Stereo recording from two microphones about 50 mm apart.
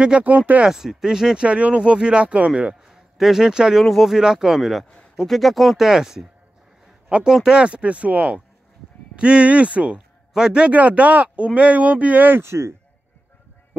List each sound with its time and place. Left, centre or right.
0.2 s speech: right
0.7 s speech: centre
3.8 s speech: centre
4.8 s a sound: centre
5.2 s speech: centre
7.1 s speech: right
10.7 s speech: right
12.3 s speech: right